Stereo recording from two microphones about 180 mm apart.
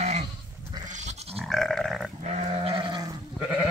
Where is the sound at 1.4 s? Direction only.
Centre (ahead or behind).